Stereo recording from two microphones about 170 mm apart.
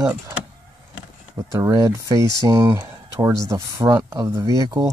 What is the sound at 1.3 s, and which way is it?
Speech, 20° right (ahead or behind).